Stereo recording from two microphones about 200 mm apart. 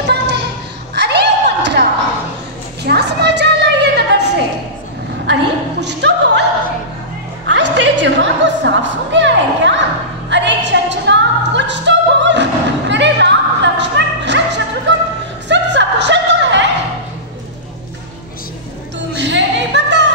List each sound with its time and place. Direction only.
0.0 s a sound: 60° right (ahead or behind)
7.5 s music: 60° right (ahead or behind)
19.1 s music: 60° right (ahead or behind)